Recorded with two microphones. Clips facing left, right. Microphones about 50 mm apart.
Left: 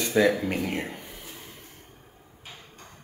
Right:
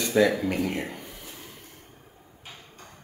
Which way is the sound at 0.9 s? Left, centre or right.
Centre.